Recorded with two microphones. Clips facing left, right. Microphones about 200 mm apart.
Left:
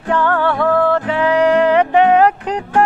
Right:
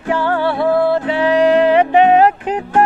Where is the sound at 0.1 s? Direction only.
10° right (ahead or behind).